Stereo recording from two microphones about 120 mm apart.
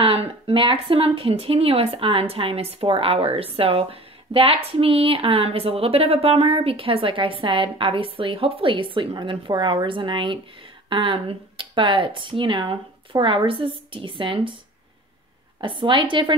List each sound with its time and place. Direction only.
0.0 s speech: 50° right (ahead or behind)
15.6 s speech: 45° right (ahead or behind)